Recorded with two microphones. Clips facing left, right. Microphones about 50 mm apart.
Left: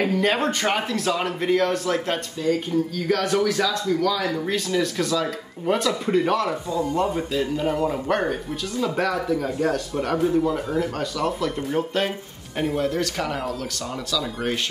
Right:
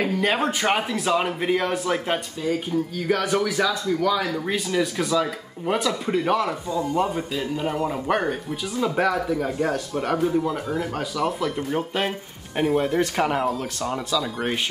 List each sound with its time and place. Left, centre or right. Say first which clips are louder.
0.0 s a man's voice: left 1 dB; centre
12.9 s a man's voice: right 4 dB; centre